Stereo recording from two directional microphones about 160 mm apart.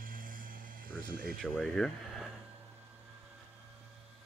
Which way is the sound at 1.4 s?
Centre (ahead or behind).